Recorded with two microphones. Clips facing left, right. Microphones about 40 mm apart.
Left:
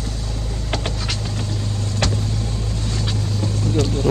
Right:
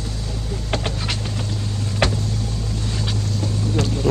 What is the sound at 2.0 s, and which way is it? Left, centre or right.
Vehicle, right.